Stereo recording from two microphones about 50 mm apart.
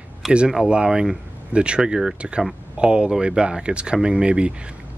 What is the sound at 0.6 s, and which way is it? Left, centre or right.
Speech, centre.